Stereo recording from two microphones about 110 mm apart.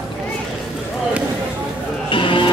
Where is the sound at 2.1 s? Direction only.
50° left (ahead or behind).